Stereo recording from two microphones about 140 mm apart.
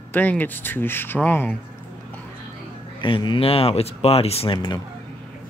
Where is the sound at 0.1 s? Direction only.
10° left (ahead or behind).